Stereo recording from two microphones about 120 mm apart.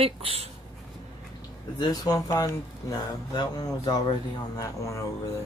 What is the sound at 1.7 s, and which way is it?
Speech, 35° left (ahead or behind).